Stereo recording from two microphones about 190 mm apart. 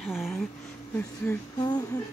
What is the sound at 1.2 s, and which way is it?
Speech, 20° left (ahead or behind).